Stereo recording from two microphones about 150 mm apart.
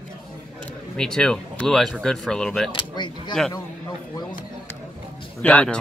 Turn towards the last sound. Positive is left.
turn(degrees=10)  # may be behind; listen again after turning